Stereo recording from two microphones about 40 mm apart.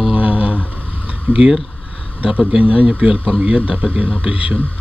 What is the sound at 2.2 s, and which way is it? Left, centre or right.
Speech, right.